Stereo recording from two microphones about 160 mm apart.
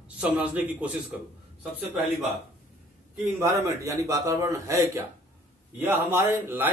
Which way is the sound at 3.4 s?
20° right (ahead or behind).